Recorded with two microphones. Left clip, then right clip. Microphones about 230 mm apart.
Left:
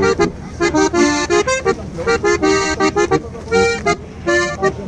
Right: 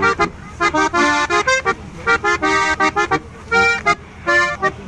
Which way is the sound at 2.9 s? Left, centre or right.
Right.